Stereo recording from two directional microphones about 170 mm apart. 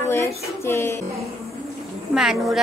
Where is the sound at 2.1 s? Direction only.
Centre (ahead or behind).